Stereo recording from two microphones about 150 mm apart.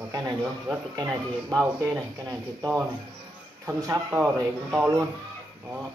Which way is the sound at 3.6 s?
20° right (ahead or behind).